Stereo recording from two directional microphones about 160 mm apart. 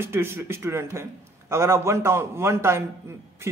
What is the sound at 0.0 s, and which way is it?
A man's voice, 15° right (ahead or behind).